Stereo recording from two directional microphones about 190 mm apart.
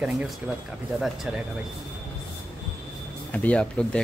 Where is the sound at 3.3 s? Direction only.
5° left (ahead or behind).